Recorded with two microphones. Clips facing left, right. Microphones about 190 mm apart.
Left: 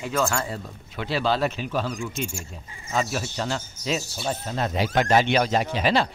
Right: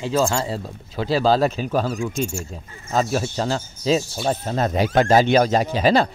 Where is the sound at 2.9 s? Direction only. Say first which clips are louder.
Right 5 dB; 35° right (ahead or behind).